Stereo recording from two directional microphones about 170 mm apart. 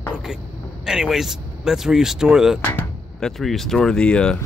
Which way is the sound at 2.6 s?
10° left (ahead or behind).